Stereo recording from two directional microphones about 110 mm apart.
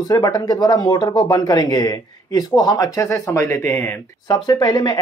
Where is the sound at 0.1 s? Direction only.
35° left (ahead or behind).